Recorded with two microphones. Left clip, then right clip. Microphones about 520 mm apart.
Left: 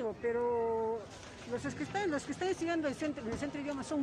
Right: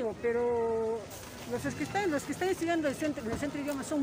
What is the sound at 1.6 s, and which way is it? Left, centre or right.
Speech, left.